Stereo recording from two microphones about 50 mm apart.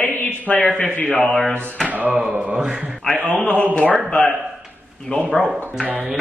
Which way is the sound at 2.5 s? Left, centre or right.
Centre.